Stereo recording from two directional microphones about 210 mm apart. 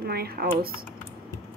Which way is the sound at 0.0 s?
45° right (ahead or behind).